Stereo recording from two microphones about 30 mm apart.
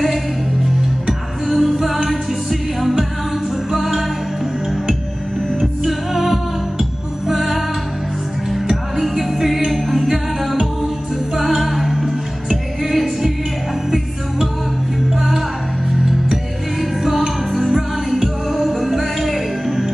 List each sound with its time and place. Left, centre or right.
1.5 s music: centre
5.9 s music: centre
9.0 s music: centre
9.7 s a capella: centre
11.3 s music: centre
17.6 s music: centre
18.2 s music: centre